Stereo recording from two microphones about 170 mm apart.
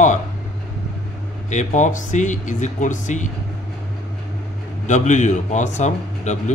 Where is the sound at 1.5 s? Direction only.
45° left (ahead or behind).